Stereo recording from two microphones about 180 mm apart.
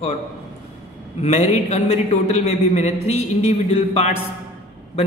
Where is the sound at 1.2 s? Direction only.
35° left (ahead or behind).